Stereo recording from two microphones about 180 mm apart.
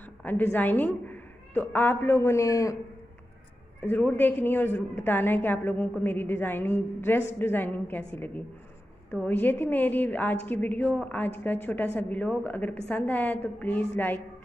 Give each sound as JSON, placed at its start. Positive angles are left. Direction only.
{"t": 0.0, "sound": "a woman's voice", "side_deg": 10}
{"t": 3.8, "sound": "a woman's voice", "side_deg": 10}
{"t": 9.1, "sound": "a woman's voice", "side_deg": 10}